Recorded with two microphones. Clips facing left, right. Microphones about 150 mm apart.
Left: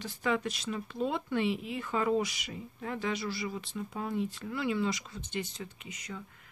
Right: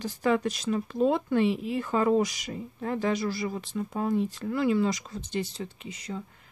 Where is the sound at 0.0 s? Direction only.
40° right (ahead or behind).